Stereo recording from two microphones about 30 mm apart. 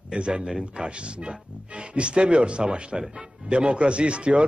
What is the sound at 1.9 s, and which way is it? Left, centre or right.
A man's voice, right.